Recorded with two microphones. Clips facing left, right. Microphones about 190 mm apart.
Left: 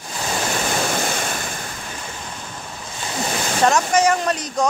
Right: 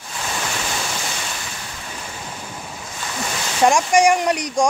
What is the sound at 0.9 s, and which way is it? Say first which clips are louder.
Waves: left 6 dB; 50° left (ahead or behind).